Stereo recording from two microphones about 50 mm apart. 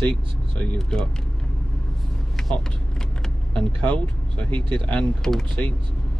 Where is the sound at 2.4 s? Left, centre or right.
Centre.